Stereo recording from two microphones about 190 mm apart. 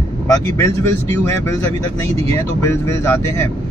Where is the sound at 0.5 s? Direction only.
15° left (ahead or behind).